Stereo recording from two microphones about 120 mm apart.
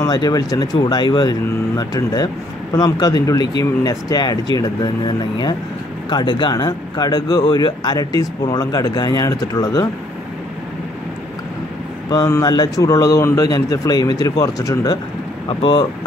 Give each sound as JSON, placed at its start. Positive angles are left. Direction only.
{"t": 0.0, "sound": "speech", "side_deg": 30}
{"t": 12.1, "sound": "speech", "side_deg": 30}